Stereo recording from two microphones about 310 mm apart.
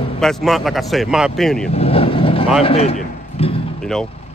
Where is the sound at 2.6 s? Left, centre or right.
Centre.